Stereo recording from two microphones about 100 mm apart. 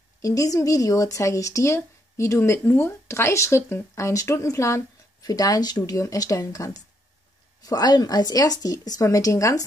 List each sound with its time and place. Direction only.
0.2 s speech: 35° left (ahead or behind)